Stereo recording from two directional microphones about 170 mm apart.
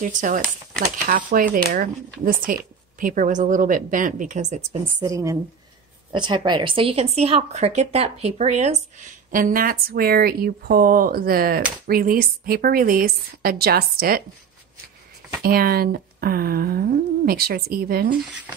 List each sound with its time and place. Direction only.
0.0 s a woman's voice: 50° right (ahead or behind)
5.0 s a woman's voice: 20° right (ahead or behind); by 14.2 s 60° right (ahead or behind)
15.4 s speech: 60° right (ahead or behind)